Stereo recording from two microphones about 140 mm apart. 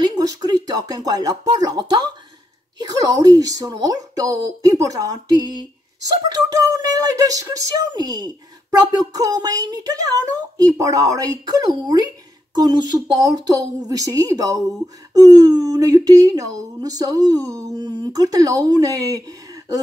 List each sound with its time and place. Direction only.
0.0 s speech: 25° right (ahead or behind)